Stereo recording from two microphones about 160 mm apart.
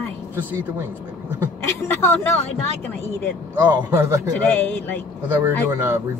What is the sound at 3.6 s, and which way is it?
Speech, 15° right (ahead or behind).